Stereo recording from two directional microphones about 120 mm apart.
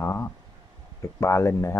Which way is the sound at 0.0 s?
20° left (ahead or behind).